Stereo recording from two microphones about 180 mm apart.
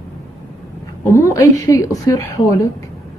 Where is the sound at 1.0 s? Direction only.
15° left (ahead or behind).